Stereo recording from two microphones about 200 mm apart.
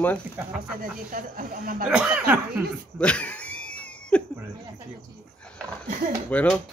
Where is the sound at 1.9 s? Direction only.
5° right (ahead or behind).